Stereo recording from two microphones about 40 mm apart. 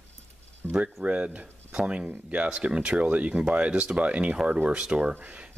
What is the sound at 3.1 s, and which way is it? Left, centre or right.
Speech, right.